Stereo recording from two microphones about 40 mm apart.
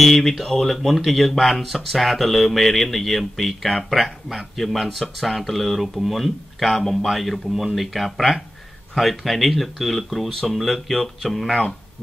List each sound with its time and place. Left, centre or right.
0.0 s speech: centre